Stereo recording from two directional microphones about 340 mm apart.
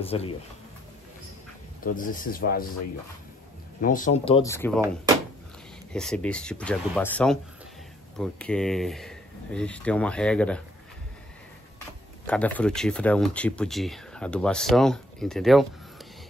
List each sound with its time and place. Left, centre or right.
0.0 s speech: centre
2.0 s speech: left
3.8 s speech: left; by 4.8 s centre
5.9 s speech: centre
12.3 s speech: centre